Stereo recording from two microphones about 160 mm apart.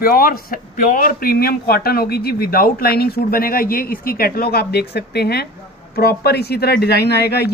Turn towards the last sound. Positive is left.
turn(degrees=90)